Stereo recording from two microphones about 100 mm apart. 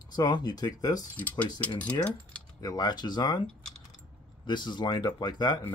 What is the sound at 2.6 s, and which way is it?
Speech, 45° left (ahead or behind).